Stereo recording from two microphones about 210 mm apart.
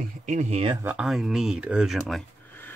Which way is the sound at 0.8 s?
5° right (ahead or behind).